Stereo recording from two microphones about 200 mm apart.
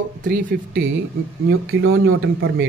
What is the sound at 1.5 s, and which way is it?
Speech, 85° right.